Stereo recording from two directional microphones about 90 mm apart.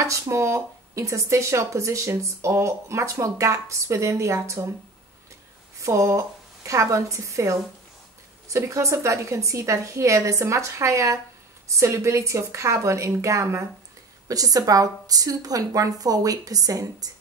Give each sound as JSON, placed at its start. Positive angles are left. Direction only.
{"t": 0.0, "sound": "speech", "side_deg": -35}
{"t": 5.8, "sound": "a woman's voice", "side_deg": -35}
{"t": 14.2, "sound": "a woman's voice", "side_deg": -40}